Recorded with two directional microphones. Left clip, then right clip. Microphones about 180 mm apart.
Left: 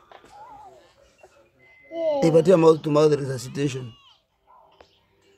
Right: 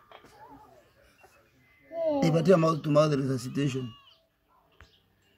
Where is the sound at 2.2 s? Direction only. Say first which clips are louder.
Left 9 dB; 45° left (ahead or behind).